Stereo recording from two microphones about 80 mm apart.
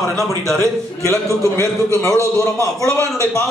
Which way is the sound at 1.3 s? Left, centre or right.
Right.